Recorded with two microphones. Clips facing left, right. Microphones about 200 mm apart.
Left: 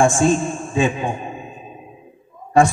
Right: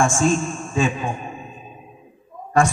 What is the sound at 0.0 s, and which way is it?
Speech, 35° left (ahead or behind).